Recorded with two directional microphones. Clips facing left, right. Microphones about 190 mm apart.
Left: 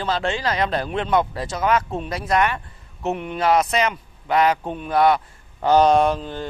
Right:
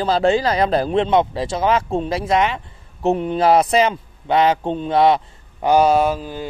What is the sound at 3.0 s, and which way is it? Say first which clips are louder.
A man's voice: right 5 dB; 35° right (ahead or behind).